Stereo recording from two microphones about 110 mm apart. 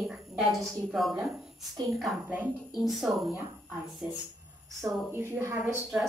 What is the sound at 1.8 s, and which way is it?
Speech, 40° right (ahead or behind).